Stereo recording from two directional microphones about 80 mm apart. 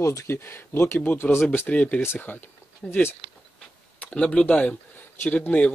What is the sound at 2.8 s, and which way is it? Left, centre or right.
Speech, centre.